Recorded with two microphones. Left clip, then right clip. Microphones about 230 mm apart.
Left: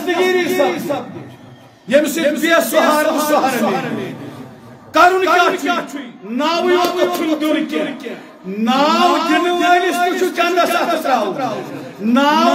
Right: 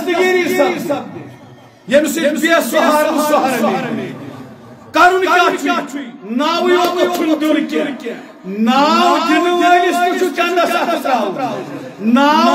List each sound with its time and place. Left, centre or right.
0.0 s a sound: centre
1.9 s a man's voice: centre
4.9 s a man's voice: centre